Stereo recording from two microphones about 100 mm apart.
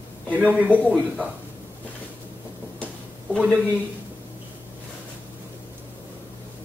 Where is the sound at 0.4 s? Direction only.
15° right (ahead or behind).